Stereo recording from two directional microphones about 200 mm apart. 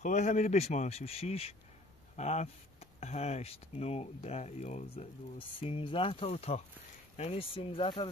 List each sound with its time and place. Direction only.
0.0 s speech: 35° left (ahead or behind)